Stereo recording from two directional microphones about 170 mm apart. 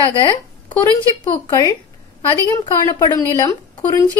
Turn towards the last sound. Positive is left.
turn(degrees=20)  # may be behind; listen again after turning